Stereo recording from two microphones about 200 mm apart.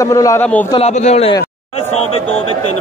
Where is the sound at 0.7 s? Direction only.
35° left (ahead or behind).